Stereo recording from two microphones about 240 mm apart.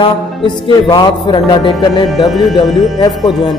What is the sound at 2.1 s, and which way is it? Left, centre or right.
Speech, centre.